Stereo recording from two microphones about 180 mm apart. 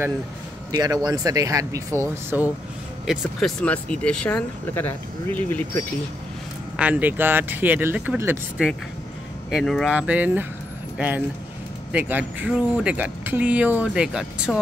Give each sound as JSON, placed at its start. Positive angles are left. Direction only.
{"t": 0.7, "sound": "speech", "side_deg": -20}
{"t": 3.1, "sound": "speech", "side_deg": 0}
{"t": 6.8, "sound": "speech", "side_deg": -10}
{"t": 9.5, "sound": "speech", "side_deg": 0}